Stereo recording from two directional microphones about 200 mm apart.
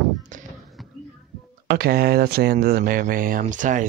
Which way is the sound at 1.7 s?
50° right (ahead or behind).